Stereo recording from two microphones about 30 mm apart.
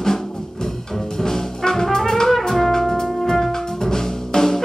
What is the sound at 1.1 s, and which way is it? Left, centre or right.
Brass instrument, centre.